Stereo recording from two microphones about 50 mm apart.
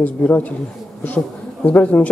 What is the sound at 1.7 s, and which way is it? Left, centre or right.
Speech, left.